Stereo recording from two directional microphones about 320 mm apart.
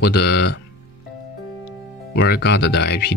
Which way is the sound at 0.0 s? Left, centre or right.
Left.